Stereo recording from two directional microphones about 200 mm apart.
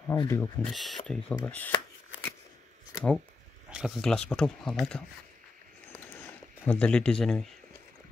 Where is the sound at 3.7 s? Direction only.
5° right (ahead or behind).